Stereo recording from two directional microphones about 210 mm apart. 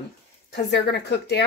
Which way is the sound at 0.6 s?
55° left (ahead or behind).